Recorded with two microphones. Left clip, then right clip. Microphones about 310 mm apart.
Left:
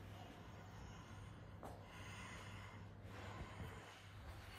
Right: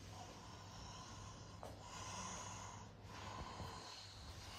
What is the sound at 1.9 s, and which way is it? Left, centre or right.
Snort, centre.